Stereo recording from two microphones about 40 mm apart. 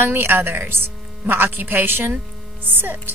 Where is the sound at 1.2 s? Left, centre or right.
Right.